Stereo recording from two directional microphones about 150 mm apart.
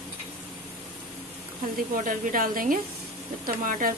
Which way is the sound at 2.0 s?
65° right (ahead or behind).